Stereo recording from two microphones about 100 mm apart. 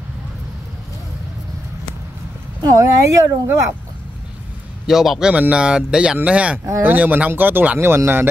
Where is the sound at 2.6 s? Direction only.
35° right (ahead or behind).